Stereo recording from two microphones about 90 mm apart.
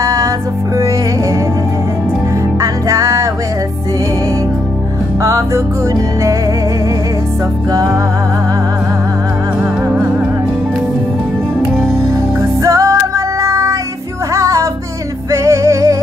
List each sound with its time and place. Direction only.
0.0 s music: 40° right (ahead or behind)
2.6 s music: 35° right (ahead or behind)
5.2 s music: 35° right (ahead or behind)
12.4 s music: 35° right (ahead or behind)